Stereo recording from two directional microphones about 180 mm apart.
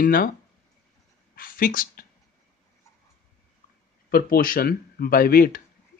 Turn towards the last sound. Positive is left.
turn(degrees=55)  # may be behind; listen again after turning